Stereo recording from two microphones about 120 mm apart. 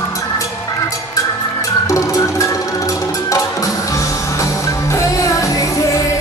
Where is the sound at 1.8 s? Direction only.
25° left (ahead or behind).